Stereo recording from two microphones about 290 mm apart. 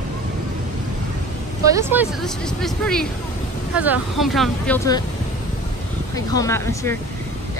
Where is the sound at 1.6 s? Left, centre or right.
Centre.